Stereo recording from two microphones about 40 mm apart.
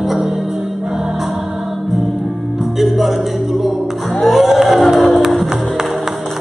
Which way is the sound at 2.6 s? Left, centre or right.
Centre.